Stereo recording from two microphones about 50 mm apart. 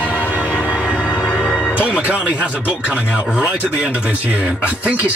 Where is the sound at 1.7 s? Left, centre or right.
Right.